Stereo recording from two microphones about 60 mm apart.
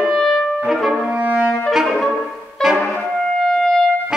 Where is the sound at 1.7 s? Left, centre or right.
Centre.